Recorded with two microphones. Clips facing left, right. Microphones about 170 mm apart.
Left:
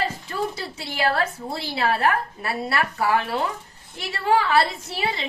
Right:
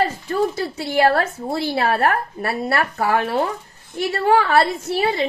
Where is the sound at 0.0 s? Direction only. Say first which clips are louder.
Right 7 dB; 50° right (ahead or behind).